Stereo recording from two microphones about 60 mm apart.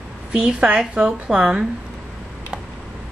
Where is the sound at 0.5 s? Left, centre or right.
Centre.